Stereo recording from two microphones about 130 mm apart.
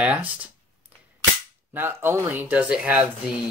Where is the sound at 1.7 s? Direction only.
15° right (ahead or behind).